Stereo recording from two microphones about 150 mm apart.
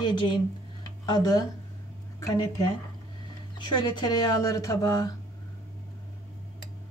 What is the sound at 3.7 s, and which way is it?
Speech, 30° left (ahead or behind).